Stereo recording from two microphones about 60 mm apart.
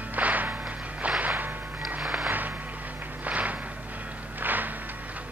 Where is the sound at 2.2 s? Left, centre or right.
Right.